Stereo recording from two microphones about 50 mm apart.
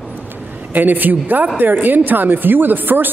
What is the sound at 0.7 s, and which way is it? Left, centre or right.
Speech, right.